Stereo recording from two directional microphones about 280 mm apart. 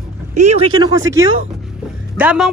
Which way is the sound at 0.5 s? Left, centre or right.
Centre.